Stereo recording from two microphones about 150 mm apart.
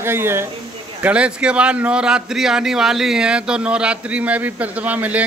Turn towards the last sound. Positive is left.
turn(degrees=-10)  # may be behind; listen again after turning